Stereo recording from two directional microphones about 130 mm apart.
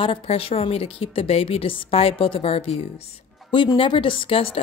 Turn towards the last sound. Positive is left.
turn(degrees=40)  # may be behind; listen again after turning